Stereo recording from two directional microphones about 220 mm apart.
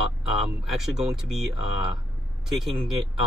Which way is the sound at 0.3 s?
Centre (ahead or behind).